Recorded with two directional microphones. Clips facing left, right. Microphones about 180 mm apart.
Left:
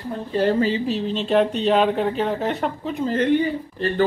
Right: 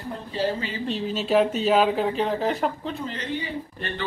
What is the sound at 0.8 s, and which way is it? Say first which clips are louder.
Speech: left 4 dB; centre (ahead or behind).